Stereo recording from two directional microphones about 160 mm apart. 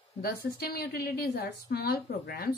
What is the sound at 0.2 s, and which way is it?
A woman's voice, 70° left (ahead or behind).